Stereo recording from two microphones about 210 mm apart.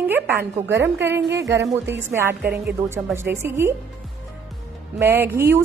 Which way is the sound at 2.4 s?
50° right (ahead or behind).